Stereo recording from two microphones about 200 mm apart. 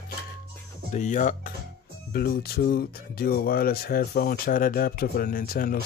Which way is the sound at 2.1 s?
50° left (ahead or behind).